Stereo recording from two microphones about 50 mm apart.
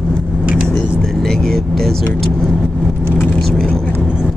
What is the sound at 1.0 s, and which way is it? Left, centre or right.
Vehicle, centre.